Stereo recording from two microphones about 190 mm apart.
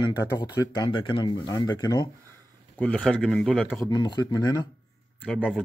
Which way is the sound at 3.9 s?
20° left (ahead or behind).